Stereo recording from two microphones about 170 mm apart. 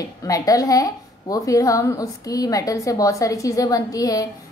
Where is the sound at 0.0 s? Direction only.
20° left (ahead or behind).